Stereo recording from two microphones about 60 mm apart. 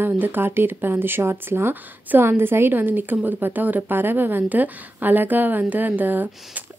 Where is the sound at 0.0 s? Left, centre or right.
Right.